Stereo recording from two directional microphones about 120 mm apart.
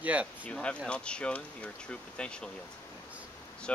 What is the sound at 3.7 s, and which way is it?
Speech, 10° left (ahead or behind).